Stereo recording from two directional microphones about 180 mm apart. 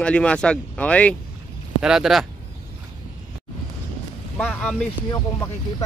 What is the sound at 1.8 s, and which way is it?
Speech, 5° right (ahead or behind).